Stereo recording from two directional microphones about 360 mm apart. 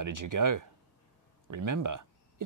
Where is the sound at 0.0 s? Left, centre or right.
Right.